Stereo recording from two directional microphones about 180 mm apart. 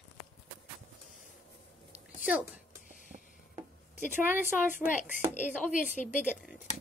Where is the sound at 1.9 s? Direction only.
5° right (ahead or behind).